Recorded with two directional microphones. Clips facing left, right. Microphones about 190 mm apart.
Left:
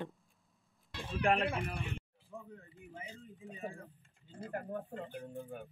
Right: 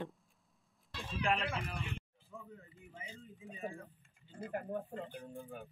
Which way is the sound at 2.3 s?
10° left (ahead or behind).